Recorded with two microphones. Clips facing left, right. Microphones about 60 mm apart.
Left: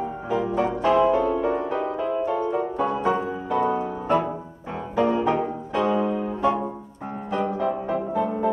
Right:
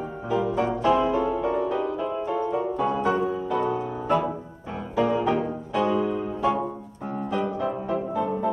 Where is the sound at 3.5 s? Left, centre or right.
Left.